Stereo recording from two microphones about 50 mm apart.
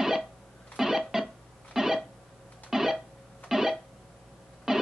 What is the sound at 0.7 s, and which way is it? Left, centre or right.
Music, centre.